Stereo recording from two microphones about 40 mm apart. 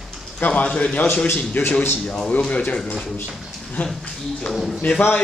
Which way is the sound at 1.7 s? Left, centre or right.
Left.